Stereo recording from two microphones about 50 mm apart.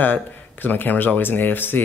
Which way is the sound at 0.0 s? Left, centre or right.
Left.